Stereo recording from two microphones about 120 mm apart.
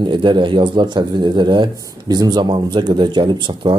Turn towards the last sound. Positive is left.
turn(degrees=-40)  # may be behind; listen again after turning